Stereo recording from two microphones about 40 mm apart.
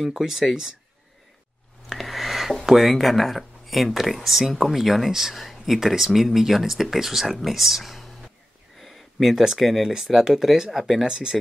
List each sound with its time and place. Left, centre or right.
0.1 s speech: centre
1.9 s speech: centre
8.7 s a sound: centre
9.3 s speech: centre
11.1 s speech: right